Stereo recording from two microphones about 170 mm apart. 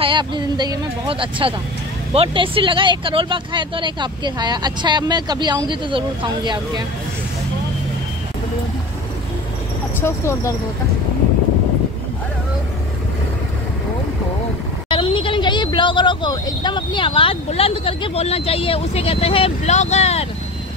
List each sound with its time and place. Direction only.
0.0 s speech: 30° right (ahead or behind)
9.9 s speech: 15° left (ahead or behind)
14.9 s speech: 30° left (ahead or behind)